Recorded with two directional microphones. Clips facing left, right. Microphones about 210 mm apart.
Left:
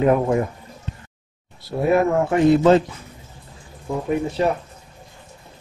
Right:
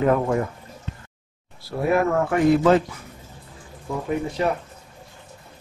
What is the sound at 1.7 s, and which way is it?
A man's voice, 25° left (ahead or behind).